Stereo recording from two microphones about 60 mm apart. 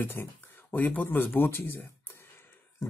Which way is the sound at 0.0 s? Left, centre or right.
Left.